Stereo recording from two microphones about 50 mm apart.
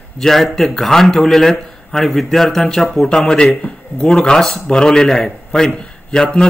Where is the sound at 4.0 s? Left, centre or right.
Centre.